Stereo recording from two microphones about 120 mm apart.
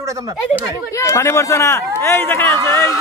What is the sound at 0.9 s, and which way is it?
A man's voice, 25° left (ahead or behind).